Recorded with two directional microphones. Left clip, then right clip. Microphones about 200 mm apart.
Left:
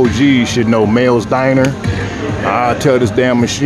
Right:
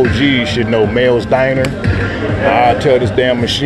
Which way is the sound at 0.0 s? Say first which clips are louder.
Left 1 dB; 35° left (ahead or behind).